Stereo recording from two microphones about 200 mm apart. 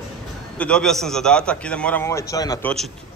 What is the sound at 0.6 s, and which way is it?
A man's voice, 5° left (ahead or behind).